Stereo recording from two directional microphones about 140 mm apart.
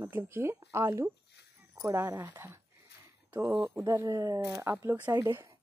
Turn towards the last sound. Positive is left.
turn(degrees=-20)  # may be behind; listen again after turning